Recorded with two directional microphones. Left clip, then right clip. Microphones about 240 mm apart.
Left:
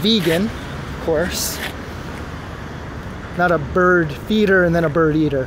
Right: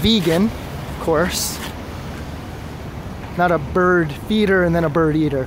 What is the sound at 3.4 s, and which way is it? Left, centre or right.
Speech, centre.